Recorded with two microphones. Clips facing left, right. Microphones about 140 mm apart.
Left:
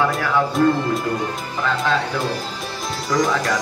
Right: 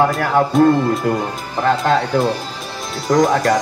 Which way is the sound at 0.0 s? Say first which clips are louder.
Right 4 dB; 45° right (ahead or behind).